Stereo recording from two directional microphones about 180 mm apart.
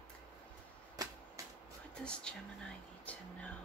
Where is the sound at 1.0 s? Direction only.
20° right (ahead or behind).